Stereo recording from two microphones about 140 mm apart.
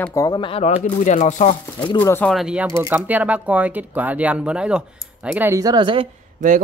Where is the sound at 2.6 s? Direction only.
20° right (ahead or behind).